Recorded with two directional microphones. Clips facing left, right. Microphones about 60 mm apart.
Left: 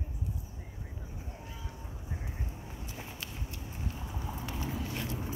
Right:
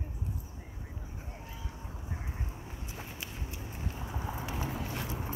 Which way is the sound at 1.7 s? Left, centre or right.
Centre.